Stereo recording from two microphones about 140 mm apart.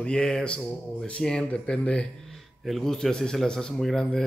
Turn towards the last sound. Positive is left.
turn(degrees=0)  # may be behind; listen again after turning